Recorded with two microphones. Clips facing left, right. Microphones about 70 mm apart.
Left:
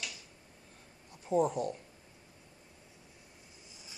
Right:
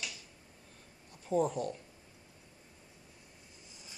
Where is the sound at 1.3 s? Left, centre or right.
Left.